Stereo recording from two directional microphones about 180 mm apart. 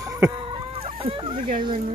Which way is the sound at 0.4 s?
30° right (ahead or behind).